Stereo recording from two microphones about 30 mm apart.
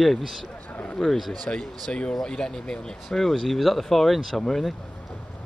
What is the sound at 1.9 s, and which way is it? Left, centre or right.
Speech, left.